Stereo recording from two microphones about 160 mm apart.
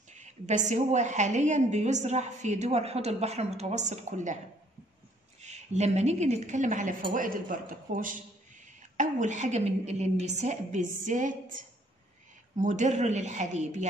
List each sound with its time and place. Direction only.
0.1 s a woman's voice: 45° right (ahead or behind)
5.4 s a woman's voice: 45° right (ahead or behind)